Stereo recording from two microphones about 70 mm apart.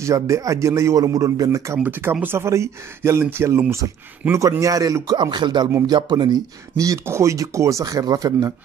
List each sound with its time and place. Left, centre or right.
0.0 s a man's voice: right
1.8 s speech: right
4.3 s a man's voice: right
5.1 s speech: right
6.8 s speech: right